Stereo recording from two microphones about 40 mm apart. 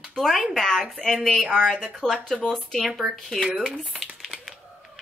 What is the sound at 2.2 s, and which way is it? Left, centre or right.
Speech, centre.